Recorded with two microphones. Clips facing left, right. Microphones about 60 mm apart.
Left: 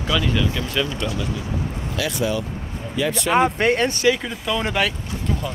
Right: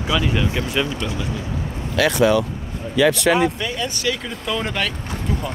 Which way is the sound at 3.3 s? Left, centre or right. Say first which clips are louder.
Left 3 dB; left.